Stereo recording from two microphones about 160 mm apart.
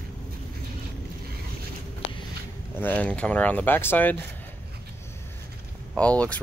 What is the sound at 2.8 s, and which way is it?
Speech, 10° left (ahead or behind).